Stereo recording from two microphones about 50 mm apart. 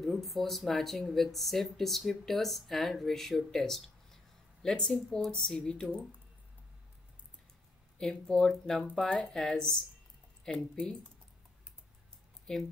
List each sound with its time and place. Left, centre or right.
0.0 s speech: centre
8.0 s speech: centre
12.5 s speech: centre